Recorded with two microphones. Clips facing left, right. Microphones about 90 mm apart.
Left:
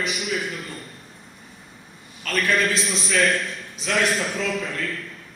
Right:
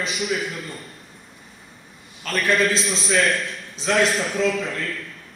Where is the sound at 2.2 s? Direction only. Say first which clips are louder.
Right 2 dB; 35° right (ahead or behind).